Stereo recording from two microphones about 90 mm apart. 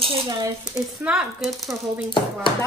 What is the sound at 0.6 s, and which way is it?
Speech, 5° right (ahead or behind).